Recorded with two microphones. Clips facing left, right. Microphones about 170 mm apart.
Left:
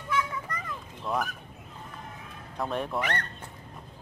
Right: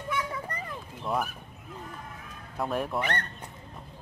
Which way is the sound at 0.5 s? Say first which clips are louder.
Even; 30° right (ahead or behind).